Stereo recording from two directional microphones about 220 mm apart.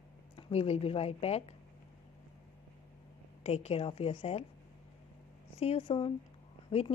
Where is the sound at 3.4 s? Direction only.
30° left (ahead or behind).